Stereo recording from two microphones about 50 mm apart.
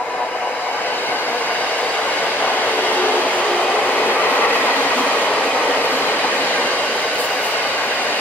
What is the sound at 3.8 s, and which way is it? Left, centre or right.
Train, left.